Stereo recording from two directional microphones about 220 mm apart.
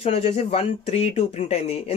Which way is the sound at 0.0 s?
25° left (ahead or behind).